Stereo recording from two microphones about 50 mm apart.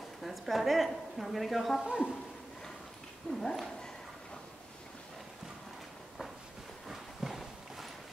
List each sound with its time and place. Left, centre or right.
0.2 s a woman's voice: centre
1.8 s speech: centre
3.3 s speech: centre
6.9 s clip-clop: centre